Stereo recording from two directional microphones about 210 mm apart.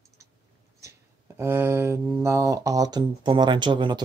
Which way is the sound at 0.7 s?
15° right (ahead or behind).